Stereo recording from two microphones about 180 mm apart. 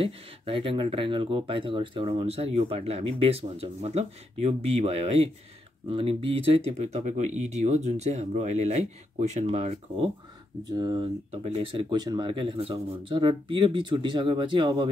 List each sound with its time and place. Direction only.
0.0 s speech: 30° right (ahead or behind)